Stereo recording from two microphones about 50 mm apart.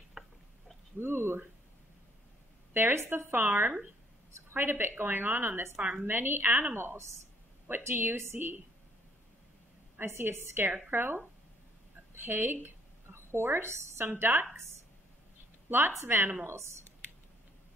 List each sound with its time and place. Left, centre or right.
0.2 s a sound: centre
0.9 s speech: right
2.7 s a woman's voice: right
5.8 s a woman's voice: right
6.0 s a woman's voice: right
9.9 s a woman's voice: right
16.1 s a woman's voice: right